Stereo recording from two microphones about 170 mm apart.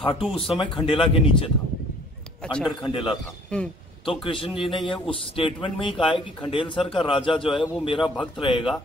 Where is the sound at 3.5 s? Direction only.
5° left (ahead or behind).